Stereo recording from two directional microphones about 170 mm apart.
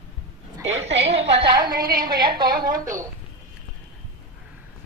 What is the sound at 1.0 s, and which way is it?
A woman's voice, 35° right (ahead or behind).